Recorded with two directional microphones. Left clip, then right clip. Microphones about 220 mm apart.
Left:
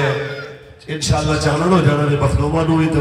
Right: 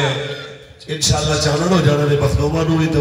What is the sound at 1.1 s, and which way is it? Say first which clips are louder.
A man's voice: left 1 dB; 50° right (ahead or behind).